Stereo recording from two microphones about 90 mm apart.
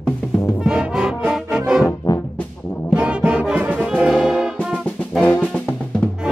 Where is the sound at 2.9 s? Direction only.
10° right (ahead or behind).